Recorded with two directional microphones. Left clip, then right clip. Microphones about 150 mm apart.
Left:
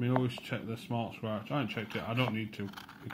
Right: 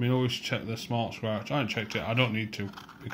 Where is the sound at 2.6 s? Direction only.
30° left (ahead or behind).